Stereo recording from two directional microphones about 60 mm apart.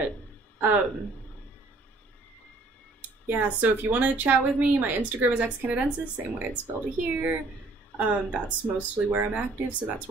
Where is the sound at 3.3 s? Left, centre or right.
Right.